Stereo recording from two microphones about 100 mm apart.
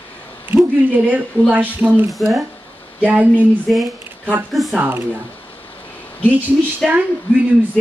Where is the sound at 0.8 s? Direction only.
15° right (ahead or behind).